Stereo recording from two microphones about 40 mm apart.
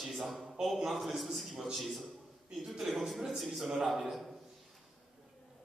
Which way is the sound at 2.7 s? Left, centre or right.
Centre.